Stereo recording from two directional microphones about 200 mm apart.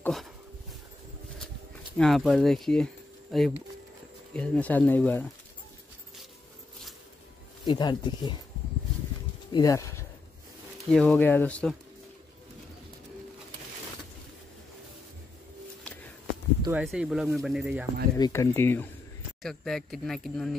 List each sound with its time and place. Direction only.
0.0 s dog: centre (ahead or behind)
2.0 s speech: centre (ahead or behind)
7.6 s speech: 20° left (ahead or behind)
9.5 s speech: 15° left (ahead or behind)
10.9 s speech: 5° left (ahead or behind)
16.7 s speech: 5° right (ahead or behind)
18.1 s speech: 15° left (ahead or behind)